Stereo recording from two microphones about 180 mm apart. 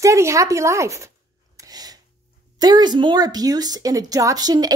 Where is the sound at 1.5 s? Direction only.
20° right (ahead or behind).